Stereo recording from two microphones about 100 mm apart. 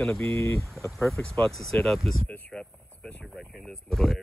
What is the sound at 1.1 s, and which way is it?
Speech, 5° left (ahead or behind).